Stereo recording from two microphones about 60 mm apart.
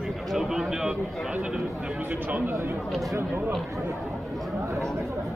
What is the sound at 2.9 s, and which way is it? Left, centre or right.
Speech, centre.